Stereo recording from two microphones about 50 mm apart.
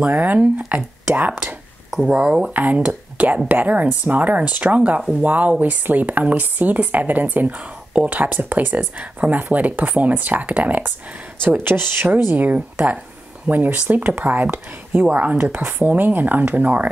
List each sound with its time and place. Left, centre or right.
0.0 s speech: right
2.0 s speech: right
11.4 s speech: right
12.1 s speech: right